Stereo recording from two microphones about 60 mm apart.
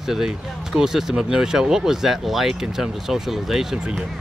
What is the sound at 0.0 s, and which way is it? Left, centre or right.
Speech, centre.